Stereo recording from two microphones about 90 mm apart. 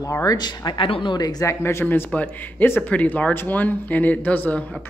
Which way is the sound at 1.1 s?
45° left (ahead or behind).